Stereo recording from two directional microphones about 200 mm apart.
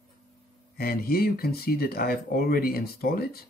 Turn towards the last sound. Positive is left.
turn(degrees=50)  # may be behind; listen again after turning